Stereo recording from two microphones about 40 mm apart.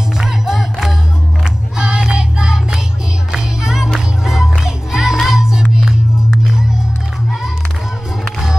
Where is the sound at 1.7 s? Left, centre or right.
Right.